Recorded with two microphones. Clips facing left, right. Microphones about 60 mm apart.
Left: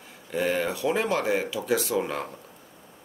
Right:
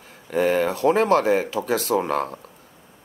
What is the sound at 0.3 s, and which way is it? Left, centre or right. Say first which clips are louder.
Speech: right 6 dB; right.